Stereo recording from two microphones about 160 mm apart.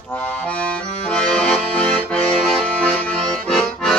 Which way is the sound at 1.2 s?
5° left (ahead or behind).